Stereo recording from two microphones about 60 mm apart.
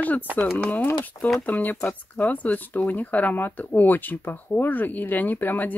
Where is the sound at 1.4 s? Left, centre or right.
Left.